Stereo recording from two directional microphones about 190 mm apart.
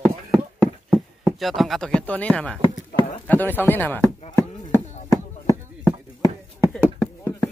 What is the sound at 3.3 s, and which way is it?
Speech, 10° left (ahead or behind).